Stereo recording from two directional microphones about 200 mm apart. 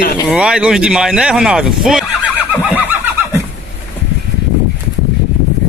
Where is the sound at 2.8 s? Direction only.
10° right (ahead or behind).